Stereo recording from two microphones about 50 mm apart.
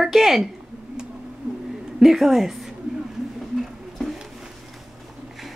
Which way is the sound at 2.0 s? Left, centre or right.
Centre.